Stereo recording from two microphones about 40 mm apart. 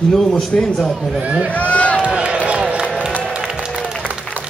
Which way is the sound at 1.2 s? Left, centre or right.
Right.